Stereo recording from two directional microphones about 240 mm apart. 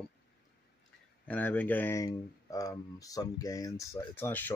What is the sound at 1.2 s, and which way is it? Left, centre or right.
Speech, centre.